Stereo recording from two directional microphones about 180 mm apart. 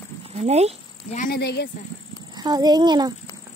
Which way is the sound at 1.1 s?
55° left (ahead or behind).